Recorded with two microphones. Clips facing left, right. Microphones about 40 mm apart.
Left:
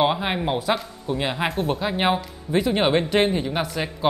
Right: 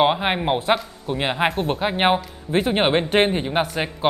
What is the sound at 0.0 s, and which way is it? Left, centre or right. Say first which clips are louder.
Speech: right 3 dB; right.